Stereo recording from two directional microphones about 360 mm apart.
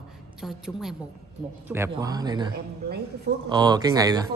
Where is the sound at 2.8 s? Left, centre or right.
Right.